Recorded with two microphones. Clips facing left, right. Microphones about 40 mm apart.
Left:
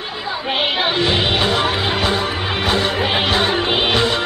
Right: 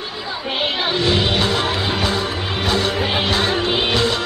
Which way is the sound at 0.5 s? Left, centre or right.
Left.